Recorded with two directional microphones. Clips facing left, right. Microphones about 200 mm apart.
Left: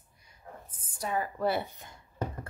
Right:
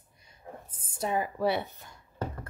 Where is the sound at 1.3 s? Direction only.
Centre (ahead or behind).